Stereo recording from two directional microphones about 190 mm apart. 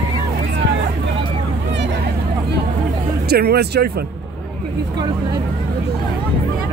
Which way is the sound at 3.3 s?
55° right (ahead or behind).